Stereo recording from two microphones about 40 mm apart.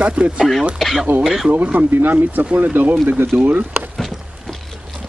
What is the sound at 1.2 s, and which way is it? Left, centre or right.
Speech, centre.